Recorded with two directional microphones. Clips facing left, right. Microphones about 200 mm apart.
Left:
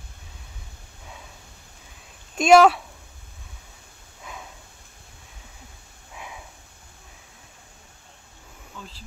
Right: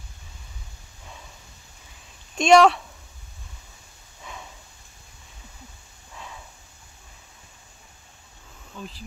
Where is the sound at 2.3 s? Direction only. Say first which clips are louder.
Left 1 dB; 5° left (ahead or behind).